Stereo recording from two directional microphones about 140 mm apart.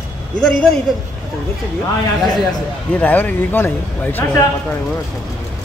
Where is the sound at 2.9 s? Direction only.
10° left (ahead or behind).